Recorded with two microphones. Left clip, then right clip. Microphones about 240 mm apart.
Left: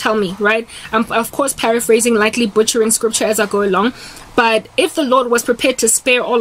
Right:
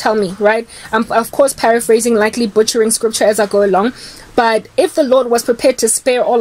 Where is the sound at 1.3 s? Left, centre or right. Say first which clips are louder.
Right 10 dB; left.